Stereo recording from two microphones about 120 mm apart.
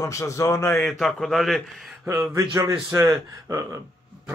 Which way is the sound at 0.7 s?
Centre (ahead or behind).